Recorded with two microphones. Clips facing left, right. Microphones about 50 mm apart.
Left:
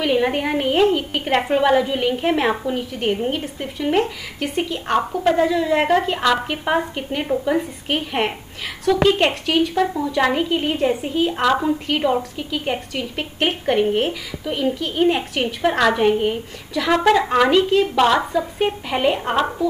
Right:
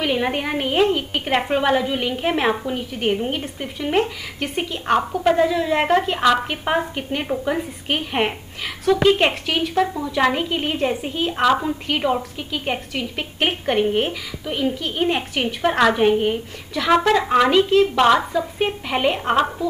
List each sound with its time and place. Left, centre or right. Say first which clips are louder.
0.0 s a woman's voice: left 3 dB; centre